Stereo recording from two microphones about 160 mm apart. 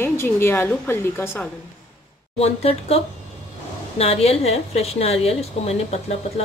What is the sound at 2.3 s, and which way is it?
A woman's voice, 40° left (ahead or behind).